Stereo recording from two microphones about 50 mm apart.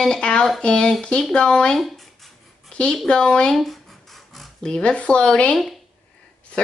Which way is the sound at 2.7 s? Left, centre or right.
Left.